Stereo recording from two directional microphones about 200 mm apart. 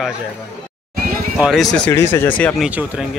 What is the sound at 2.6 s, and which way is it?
Speech, 5° right (ahead or behind).